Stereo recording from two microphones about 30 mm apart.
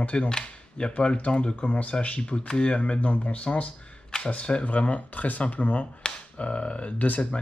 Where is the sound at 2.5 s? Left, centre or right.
Left.